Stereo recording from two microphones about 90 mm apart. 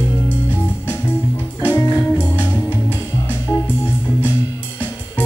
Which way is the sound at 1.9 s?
15° left (ahead or behind).